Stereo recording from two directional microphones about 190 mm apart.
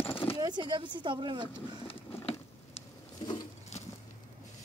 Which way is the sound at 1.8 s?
30° left (ahead or behind).